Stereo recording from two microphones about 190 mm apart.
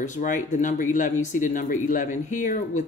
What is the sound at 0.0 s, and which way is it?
Speech, 40° left (ahead or behind).